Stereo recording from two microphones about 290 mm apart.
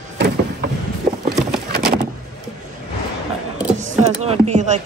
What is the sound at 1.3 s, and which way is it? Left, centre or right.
Horse, centre.